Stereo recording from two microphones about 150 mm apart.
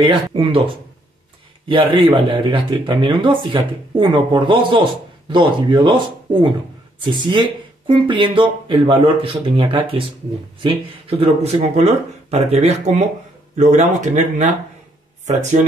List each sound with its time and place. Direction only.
0.0 s speech: 35° right (ahead or behind)
1.7 s speech: 35° right (ahead or behind); by 15.6 s 55° right (ahead or behind)